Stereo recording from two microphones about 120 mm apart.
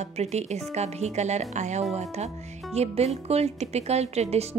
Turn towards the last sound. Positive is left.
turn(degrees=-65)  # may be behind; listen again after turning